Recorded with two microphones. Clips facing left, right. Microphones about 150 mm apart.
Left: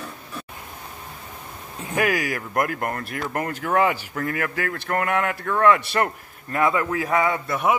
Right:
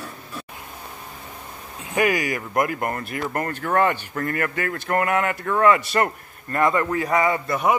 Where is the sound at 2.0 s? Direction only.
Centre (ahead or behind).